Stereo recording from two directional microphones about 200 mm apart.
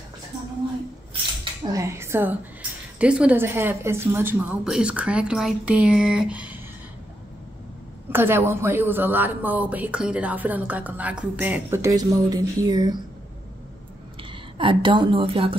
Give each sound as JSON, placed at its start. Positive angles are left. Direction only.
{"t": 1.4, "sound": "speech", "side_deg": -15}
{"t": 8.1, "sound": "speech", "side_deg": -10}
{"t": 14.3, "sound": "a woman's voice", "side_deg": -25}